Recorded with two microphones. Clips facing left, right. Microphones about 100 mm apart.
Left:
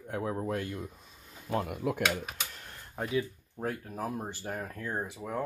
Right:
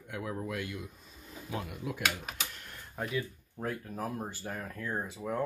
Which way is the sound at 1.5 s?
50° left (ahead or behind).